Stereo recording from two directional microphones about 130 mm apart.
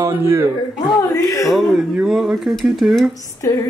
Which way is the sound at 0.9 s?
25° left (ahead or behind).